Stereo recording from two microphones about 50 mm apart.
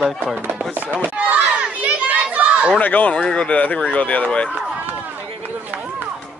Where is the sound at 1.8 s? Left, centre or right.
Right.